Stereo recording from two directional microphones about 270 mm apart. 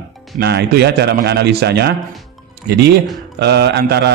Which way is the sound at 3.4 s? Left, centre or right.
Right.